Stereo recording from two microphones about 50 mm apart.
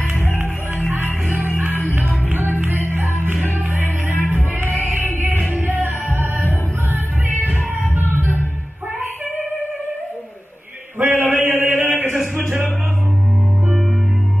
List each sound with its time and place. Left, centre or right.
0.1 s music: left
2.0 s music: right
4.9 s music: right
7.4 s music: right
11.0 s chant: right
12.4 s music: right